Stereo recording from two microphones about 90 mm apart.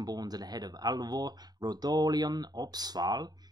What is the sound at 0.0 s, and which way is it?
Speech, 45° right (ahead or behind).